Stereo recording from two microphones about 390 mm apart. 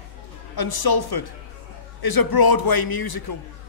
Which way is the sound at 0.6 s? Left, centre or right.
Left.